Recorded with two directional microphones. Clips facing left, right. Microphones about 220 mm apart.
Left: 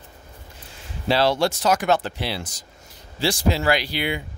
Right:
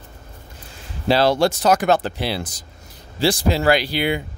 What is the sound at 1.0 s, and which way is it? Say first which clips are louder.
Speech: right 3 dB; 40° right (ahead or behind).